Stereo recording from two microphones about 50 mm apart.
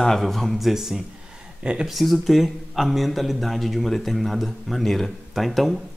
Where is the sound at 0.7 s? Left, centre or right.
Centre.